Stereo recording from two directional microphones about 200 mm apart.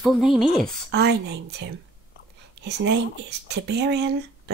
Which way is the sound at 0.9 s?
55° right (ahead or behind).